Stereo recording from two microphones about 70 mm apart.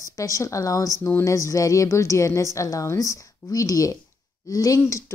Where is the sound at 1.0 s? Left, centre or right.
Left.